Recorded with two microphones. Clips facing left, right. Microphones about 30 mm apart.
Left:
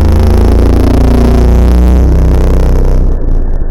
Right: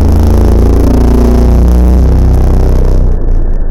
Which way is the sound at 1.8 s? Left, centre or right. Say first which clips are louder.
Even; left.